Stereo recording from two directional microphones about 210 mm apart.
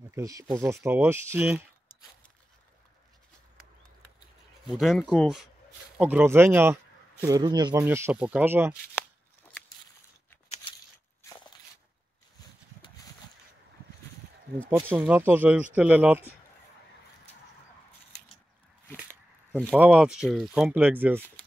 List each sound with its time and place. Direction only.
0.1 s speech: 15° right (ahead or behind)
4.6 s speech: centre (ahead or behind)
9.5 s a sound: 10° left (ahead or behind)
14.7 s speech: 10° right (ahead or behind)
19.0 s a sound: 10° left (ahead or behind)
19.7 s speech: 5° right (ahead or behind)